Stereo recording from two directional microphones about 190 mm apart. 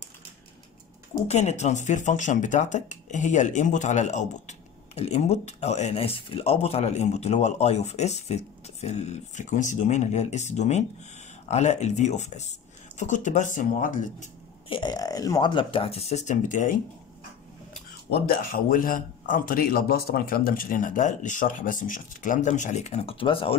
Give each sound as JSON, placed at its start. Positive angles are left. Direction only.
{"t": 1.2, "sound": "speech", "side_deg": 35}
{"t": 14.7, "sound": "speech", "side_deg": 25}
{"t": 17.7, "sound": "speech", "side_deg": 45}